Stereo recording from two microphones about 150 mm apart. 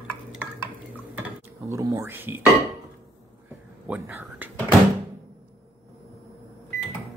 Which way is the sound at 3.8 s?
10° right (ahead or behind).